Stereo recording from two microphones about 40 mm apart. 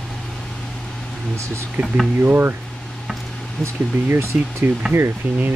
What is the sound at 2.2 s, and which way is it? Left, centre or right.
Speech, right.